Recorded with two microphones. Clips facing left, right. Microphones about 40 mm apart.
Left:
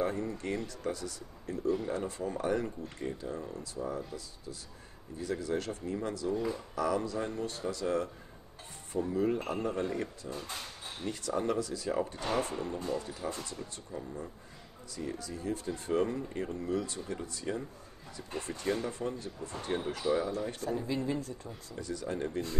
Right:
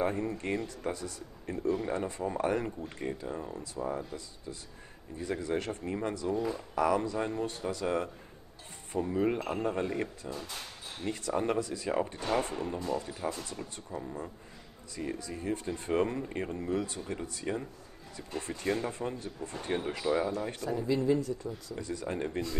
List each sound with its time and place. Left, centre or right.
0.0 s speech: right
5.2 s speech: right
18.9 s speech: right
20.6 s speech: left
21.7 s speech: right